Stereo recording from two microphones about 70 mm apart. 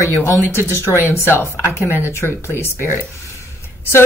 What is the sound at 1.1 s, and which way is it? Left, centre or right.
Speech, left.